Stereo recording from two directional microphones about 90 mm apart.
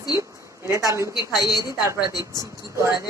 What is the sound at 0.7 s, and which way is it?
Speech, 35° right (ahead or behind).